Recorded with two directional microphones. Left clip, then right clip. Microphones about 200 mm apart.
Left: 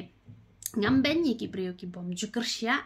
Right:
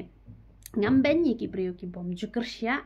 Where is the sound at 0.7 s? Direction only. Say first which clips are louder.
Right 3 dB; 20° left (ahead or behind).